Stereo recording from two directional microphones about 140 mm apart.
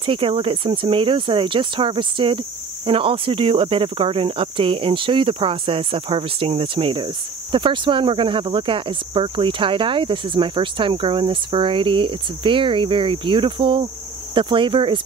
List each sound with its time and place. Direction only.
0.0 s speech: 40° right (ahead or behind)